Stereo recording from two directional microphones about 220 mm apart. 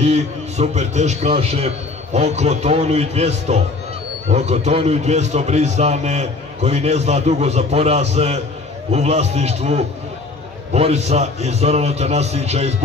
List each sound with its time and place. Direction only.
0.0 s a man's voice: 30° right (ahead or behind)